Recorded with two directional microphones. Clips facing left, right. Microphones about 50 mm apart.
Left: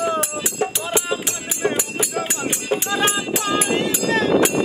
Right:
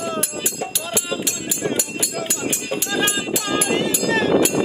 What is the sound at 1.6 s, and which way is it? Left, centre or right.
Music, left.